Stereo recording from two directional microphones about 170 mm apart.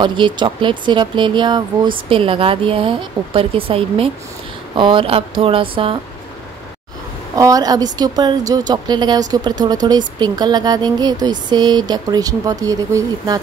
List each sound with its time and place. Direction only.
0.0 s speech: 25° right (ahead or behind)
7.3 s speech: 20° right (ahead or behind)